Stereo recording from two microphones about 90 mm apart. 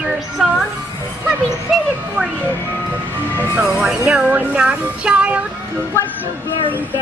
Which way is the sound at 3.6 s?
10° right (ahead or behind).